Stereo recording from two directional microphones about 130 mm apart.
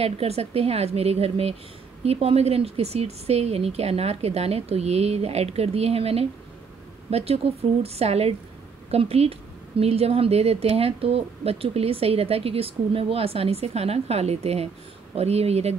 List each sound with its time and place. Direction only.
0.0 s a woman's voice: 50° right (ahead or behind)